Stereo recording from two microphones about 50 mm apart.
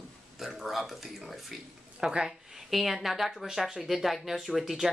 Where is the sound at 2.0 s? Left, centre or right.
Centre.